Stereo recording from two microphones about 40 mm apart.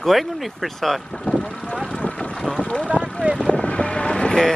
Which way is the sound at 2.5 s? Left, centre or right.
Left.